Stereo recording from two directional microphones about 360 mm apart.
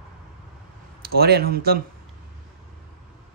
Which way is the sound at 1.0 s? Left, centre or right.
Right.